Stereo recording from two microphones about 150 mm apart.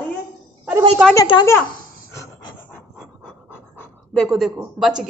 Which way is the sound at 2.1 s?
20° left (ahead or behind).